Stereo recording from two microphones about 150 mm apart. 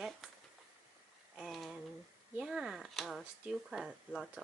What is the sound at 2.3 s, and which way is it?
Speech, 5° right (ahead or behind).